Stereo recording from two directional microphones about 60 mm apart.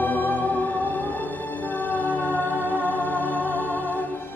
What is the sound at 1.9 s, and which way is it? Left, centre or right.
Music, left.